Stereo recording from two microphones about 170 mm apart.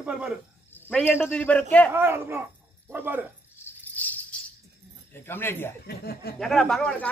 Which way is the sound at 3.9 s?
10° left (ahead or behind).